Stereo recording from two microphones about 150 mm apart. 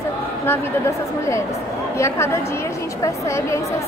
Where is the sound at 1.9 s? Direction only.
20° left (ahead or behind).